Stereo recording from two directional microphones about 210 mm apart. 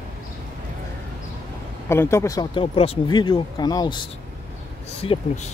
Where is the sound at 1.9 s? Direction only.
10° left (ahead or behind).